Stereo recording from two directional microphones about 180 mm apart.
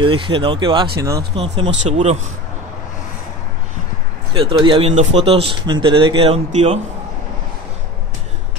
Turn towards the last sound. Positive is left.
turn(degrees=-35)  # may be behind; listen again after turning